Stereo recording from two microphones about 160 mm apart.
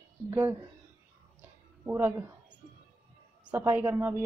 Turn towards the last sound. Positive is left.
turn(degrees=-15)  # may be behind; listen again after turning